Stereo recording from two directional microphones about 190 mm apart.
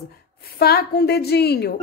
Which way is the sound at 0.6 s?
55° left (ahead or behind).